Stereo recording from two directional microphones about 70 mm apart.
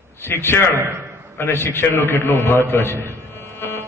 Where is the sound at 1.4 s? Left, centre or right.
Left.